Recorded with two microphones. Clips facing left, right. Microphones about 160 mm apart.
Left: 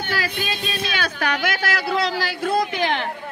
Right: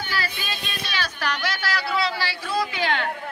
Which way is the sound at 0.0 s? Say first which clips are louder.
Left 4 dB; 55° left (ahead or behind).